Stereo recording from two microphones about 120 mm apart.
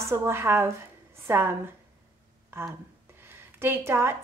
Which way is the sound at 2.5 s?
20° right (ahead or behind).